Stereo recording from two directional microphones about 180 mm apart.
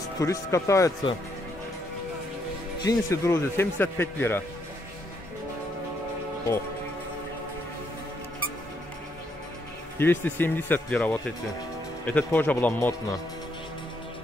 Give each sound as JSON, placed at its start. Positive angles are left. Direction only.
{"t": 0.2, "sound": "a man's voice", "side_deg": 15}
{"t": 2.8, "sound": "a man's voice", "side_deg": 20}
{"t": 9.9, "sound": "a man's voice", "side_deg": 10}